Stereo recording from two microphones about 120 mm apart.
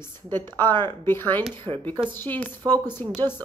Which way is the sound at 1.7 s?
30° right (ahead or behind).